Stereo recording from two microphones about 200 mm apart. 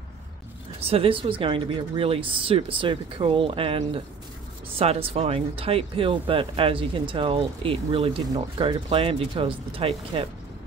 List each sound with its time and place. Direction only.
0.7 s speech: 30° right (ahead or behind)